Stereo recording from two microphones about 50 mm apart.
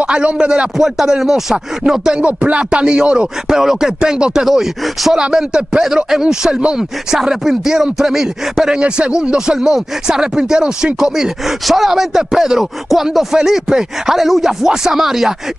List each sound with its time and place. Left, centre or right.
0.0 s speech: right
0.7 s speech: centre
2.1 s speech: right
4.5 s speech: centre
5.1 s speech: centre